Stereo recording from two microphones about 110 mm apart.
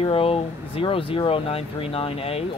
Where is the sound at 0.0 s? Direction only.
60° left (ahead or behind).